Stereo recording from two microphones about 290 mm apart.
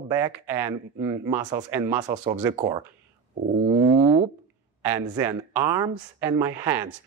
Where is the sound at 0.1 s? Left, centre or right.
Centre.